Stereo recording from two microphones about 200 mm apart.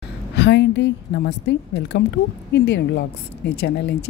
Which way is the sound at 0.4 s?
60° left (ahead or behind).